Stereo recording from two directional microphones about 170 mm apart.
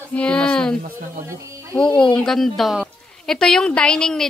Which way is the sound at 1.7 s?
5° left (ahead or behind).